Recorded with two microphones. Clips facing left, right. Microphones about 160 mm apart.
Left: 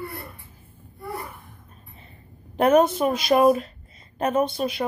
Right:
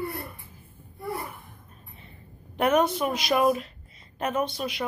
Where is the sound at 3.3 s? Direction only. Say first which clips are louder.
Left 5 dB; 35° left (ahead or behind).